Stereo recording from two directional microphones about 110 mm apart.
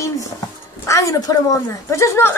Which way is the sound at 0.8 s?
30° left (ahead or behind).